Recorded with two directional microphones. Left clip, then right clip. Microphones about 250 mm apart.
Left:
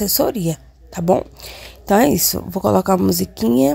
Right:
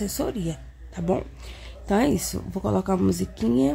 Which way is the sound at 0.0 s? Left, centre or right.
Left.